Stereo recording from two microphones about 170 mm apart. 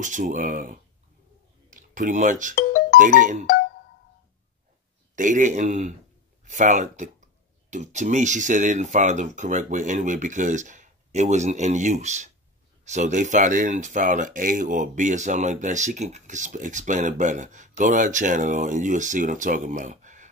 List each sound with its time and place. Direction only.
0.0 s speech: 50° right (ahead or behind)
2.5 s music: 55° left (ahead or behind)
3.0 s speech: 50° right (ahead or behind)
5.1 s speech: 50° right (ahead or behind)